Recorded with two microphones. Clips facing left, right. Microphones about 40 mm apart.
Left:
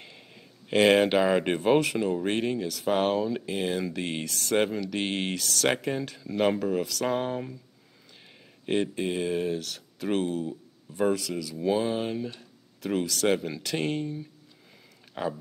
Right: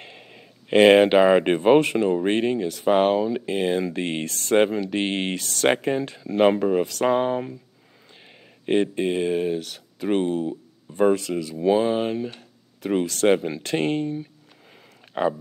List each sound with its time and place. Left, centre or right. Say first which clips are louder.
0.0 s speech: right 5 dB; right
8.6 s speech: right 6 dB; right
10.2 s speech: right 6 dB; right
13.0 s speech: right 6 dB; right
13.3 s speech: right 6 dB; right